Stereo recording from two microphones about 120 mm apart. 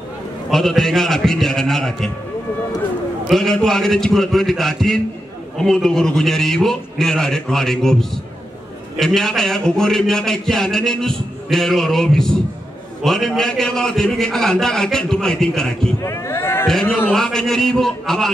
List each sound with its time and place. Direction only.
0.5 s a man's voice: centre (ahead or behind)
3.3 s a man's voice: 5° left (ahead or behind)
16.0 s a sound: 25° left (ahead or behind)
17.1 s a man's voice: 5° left (ahead or behind)